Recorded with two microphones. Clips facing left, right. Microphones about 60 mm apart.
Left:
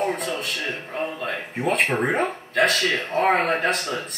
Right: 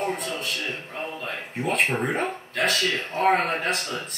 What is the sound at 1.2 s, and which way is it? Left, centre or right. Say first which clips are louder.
Speech: left 4 dB; centre.